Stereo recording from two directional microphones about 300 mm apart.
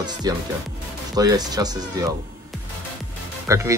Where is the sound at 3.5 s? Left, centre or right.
Centre.